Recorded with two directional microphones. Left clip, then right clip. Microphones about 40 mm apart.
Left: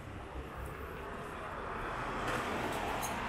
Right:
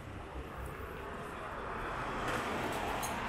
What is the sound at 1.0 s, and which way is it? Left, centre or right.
Vehicle, centre.